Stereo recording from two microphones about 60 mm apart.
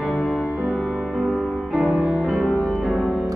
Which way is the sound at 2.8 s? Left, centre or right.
Centre.